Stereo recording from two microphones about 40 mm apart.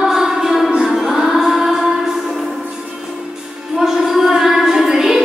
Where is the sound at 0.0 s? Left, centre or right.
Centre.